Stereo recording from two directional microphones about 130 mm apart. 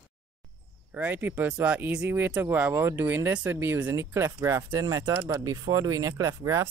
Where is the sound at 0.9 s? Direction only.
15° right (ahead or behind).